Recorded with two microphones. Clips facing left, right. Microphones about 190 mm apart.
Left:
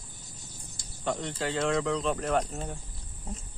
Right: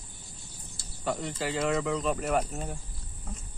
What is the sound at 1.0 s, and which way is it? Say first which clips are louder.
Speech: even; 5° right (ahead or behind).